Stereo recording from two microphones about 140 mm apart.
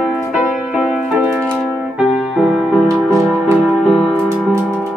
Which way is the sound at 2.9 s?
20° right (ahead or behind).